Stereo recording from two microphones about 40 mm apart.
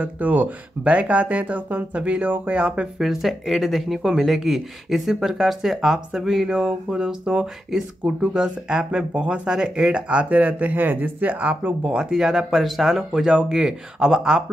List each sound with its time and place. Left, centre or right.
0.0 s speech: right
2.2 s speech: right
2.5 s speech: right
3.0 s speech: centre
6.9 s speech: centre
7.7 s speech: centre
9.1 s speech: right
9.5 s speech: centre
10.3 s speech: right
11.8 s speech: right; by 13.0 s centre
13.1 s speech: centre